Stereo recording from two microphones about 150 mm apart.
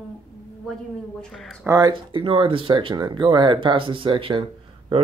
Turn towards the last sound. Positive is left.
turn(degrees=-35)  # may be behind; listen again after turning